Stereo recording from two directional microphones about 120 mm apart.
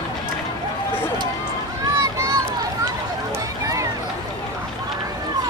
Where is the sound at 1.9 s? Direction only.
25° right (ahead or behind).